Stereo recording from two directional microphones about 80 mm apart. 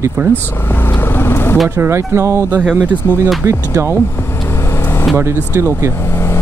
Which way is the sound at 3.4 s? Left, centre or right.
Right.